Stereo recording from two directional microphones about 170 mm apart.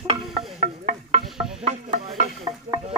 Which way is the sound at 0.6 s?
40° right (ahead or behind).